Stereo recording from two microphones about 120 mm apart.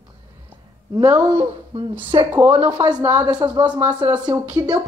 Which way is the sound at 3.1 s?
35° right (ahead or behind).